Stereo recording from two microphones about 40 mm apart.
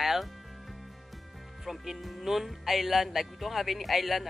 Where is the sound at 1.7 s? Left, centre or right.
Centre.